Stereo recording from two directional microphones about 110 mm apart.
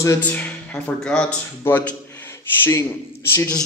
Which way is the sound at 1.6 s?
20° left (ahead or behind).